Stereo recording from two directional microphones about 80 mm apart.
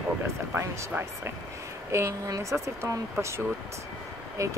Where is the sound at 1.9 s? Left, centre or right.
Right.